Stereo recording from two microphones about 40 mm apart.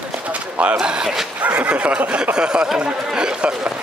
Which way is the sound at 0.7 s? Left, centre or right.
Centre.